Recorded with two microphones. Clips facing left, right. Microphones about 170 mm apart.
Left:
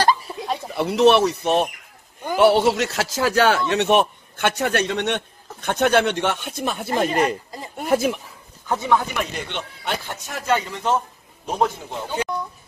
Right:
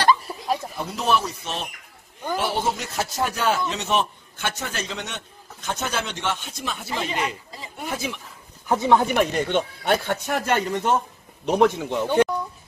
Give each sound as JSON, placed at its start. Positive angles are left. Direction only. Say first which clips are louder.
{"t": 0.2, "sound": "a sound", "louder": "right 1 dB", "side_deg": 0}
{"t": 0.7, "sound": "speech", "louder": "left 12 dB", "side_deg": 75}
{"t": 8.6, "sound": "speech", "louder": "right 2 dB", "side_deg": -20}
{"t": 9.1, "sound": "speech", "louder": "right 7 dB", "side_deg": -45}
{"t": 11.4, "sound": "speech", "louder": "right 4 dB", "side_deg": -75}